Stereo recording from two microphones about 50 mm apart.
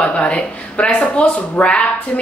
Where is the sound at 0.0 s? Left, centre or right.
Left.